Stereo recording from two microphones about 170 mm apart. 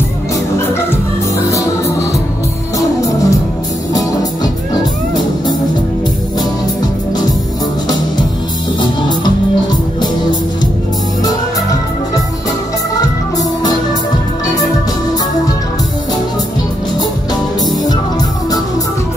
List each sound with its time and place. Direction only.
3.0 s music: 20° left (ahead or behind)
8.8 s music: 25° left (ahead or behind)